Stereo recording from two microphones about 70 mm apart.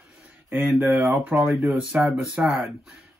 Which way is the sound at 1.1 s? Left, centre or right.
Right.